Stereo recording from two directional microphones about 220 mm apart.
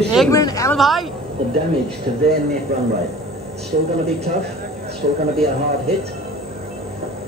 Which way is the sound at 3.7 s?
40° right (ahead or behind).